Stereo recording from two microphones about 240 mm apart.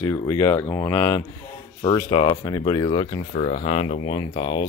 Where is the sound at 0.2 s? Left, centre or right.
Centre.